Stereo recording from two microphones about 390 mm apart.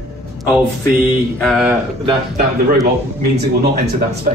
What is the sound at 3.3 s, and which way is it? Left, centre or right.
Speech, right.